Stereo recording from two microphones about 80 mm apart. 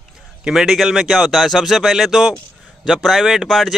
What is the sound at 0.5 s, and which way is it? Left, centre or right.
Speech, centre.